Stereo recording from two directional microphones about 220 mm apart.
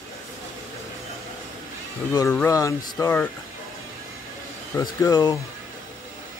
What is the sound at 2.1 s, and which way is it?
Speech, 10° left (ahead or behind).